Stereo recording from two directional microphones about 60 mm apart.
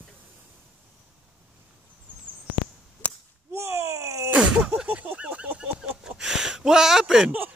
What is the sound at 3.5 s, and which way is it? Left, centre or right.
Groan, right.